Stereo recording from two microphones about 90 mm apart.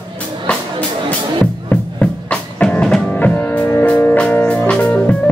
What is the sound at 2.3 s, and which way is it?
Music, 10° left (ahead or behind).